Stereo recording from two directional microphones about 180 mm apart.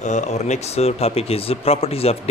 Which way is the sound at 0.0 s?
40° left (ahead or behind).